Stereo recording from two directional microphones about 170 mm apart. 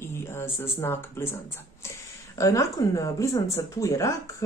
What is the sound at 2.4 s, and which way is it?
Speech, 20° left (ahead or behind).